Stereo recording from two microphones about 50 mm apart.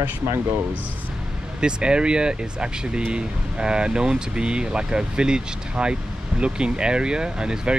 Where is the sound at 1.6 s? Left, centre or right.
Centre.